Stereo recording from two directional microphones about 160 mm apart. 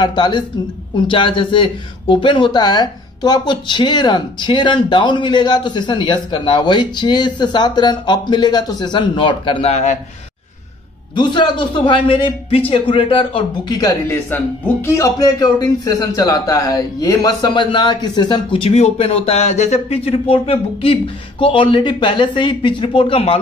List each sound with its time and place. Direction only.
0.0 s speech: 30° left (ahead or behind)
11.1 s a man's voice: 30° left (ahead or behind)